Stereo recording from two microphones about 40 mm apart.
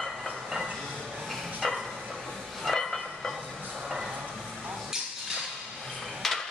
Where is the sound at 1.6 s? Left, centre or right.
Centre.